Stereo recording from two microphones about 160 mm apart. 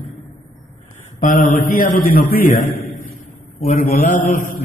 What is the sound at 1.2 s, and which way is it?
A man's voice, 55° left (ahead or behind).